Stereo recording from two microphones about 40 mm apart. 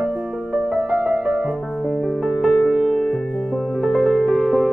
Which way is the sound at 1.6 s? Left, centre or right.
Centre.